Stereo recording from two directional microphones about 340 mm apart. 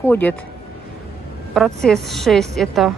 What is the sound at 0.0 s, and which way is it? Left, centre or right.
Speech, centre.